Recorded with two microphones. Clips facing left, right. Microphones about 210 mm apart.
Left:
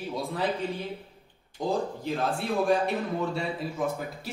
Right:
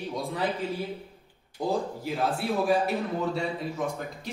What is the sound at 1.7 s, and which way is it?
A man's voice, centre (ahead or behind).